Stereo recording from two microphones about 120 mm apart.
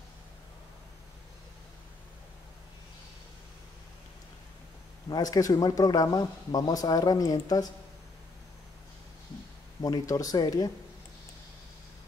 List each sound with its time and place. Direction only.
5.1 s speech: 30° left (ahead or behind)
9.8 s speech: 30° left (ahead or behind)